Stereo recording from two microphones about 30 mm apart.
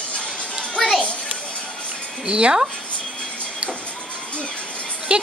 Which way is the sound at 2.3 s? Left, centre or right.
Right.